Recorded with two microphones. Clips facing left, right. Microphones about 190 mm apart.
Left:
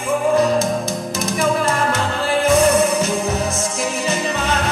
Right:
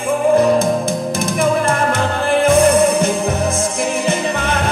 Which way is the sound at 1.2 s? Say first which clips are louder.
Right 1 dB; 55° right (ahead or behind).